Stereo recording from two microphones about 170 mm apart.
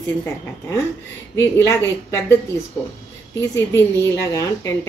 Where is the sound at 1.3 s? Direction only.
15° left (ahead or behind).